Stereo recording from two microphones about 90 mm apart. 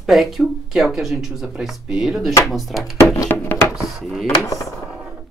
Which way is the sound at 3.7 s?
Centre (ahead or behind).